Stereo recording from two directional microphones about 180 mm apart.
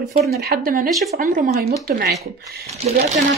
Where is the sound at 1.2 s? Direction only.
40° right (ahead or behind).